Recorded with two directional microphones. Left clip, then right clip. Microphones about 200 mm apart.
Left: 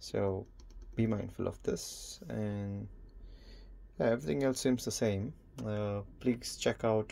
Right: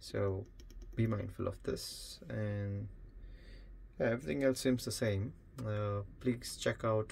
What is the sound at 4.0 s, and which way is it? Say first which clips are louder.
Speech: left 2 dB; 15° left (ahead or behind).